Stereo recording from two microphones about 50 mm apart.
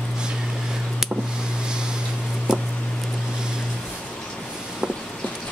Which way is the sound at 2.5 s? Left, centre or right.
Centre.